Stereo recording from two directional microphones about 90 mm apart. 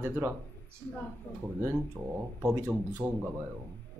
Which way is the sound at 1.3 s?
20° left (ahead or behind).